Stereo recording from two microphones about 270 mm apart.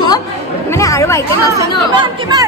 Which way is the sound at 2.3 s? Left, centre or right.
Centre.